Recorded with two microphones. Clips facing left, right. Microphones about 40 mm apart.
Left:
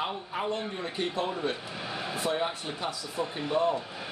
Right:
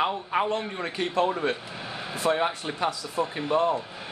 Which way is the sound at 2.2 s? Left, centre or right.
Right.